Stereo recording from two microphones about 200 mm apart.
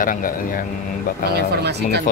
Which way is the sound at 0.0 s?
45° left (ahead or behind).